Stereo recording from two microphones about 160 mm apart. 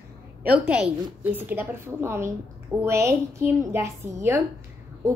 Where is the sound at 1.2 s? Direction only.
10° right (ahead or behind).